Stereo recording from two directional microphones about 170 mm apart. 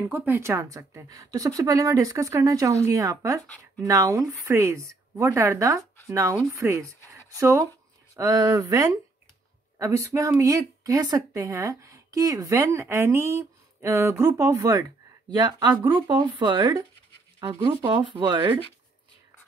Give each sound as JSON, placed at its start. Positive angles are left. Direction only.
{"t": 0.1, "sound": "a woman's voice", "side_deg": -10}
{"t": 3.4, "sound": "speech", "side_deg": 10}
{"t": 3.8, "sound": "a woman's voice", "side_deg": -20}